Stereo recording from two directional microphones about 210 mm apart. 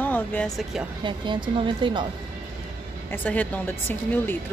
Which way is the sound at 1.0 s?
20° right (ahead or behind).